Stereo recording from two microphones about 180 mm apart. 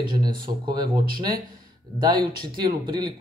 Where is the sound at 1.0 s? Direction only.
55° right (ahead or behind).